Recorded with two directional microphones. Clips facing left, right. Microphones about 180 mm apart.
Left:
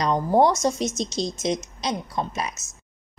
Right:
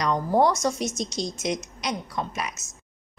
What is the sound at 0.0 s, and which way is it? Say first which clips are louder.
A woman's voice: left 2 dB; 25° left (ahead or behind).